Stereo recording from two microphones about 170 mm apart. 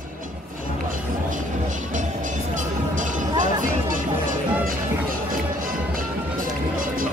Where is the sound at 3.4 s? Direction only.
50° right (ahead or behind).